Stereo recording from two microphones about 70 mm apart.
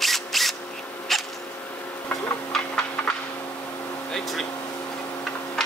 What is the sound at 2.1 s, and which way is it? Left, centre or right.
Printer, left.